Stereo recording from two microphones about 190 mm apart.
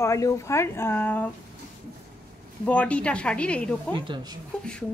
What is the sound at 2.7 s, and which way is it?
A woman's voice, 5° left (ahead or behind).